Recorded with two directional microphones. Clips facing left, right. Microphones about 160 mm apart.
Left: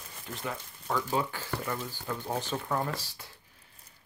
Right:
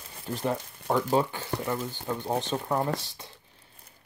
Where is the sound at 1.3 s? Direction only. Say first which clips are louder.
Right 4 dB; 20° right (ahead or behind).